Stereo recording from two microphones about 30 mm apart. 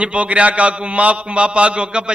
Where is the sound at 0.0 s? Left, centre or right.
Right.